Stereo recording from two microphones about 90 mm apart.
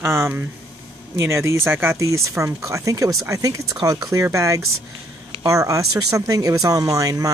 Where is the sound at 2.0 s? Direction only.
35° right (ahead or behind).